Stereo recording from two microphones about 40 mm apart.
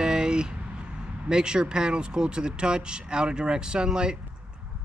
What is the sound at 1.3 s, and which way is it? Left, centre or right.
Speech, right.